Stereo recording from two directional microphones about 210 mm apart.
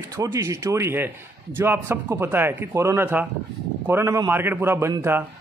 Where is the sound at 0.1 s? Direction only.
15° right (ahead or behind).